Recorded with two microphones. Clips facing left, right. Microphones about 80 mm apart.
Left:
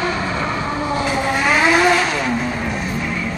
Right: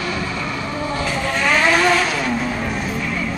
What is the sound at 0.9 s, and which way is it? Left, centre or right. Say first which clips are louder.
Vehicle: left 3 dB; centre.